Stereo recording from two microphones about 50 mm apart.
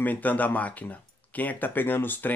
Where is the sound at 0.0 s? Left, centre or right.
Left.